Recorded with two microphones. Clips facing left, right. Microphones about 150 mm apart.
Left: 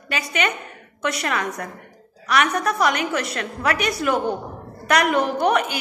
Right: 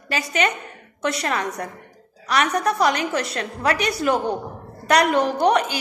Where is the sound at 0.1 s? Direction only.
35° right (ahead or behind).